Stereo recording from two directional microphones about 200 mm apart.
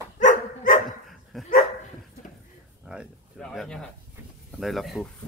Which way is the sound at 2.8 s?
5° right (ahead or behind).